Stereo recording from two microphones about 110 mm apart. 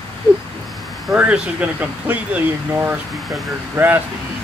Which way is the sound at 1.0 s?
10° right (ahead or behind).